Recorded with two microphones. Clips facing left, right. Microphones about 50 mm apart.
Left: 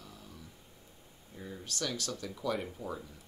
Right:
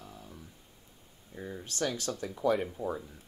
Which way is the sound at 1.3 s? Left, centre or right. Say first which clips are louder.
Right 4 dB; right.